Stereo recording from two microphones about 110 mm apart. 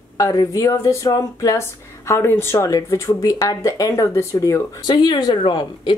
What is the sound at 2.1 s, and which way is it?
A woman's voice, 20° left (ahead or behind).